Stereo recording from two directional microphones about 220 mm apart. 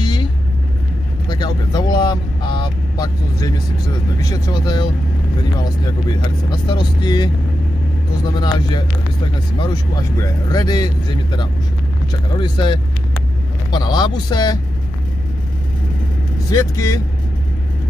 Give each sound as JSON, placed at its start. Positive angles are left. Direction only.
{"t": 1.3, "sound": "vehicle", "side_deg": 20}
{"t": 4.2, "sound": "speech", "side_deg": 20}
{"t": 8.3, "sound": "speech", "side_deg": 20}
{"t": 16.4, "sound": "speech", "side_deg": 15}